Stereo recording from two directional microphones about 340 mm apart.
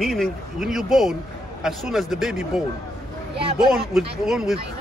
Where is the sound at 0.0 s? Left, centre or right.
Centre.